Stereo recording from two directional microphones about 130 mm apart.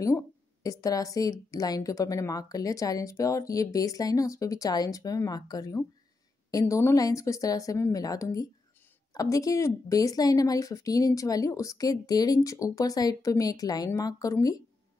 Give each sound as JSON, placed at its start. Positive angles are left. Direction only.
{"t": 0.7, "sound": "speech", "side_deg": 25}